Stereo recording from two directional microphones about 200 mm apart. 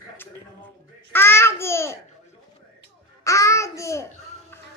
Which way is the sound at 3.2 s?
15° left (ahead or behind).